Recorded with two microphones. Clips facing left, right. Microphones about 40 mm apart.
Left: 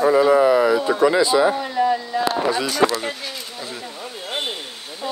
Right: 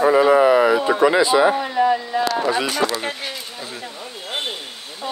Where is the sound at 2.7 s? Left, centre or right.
Right.